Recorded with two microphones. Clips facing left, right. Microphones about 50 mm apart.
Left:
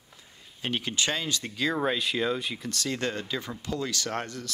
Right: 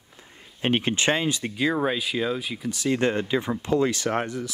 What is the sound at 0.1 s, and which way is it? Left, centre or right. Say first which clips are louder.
Speech: right 4 dB; right.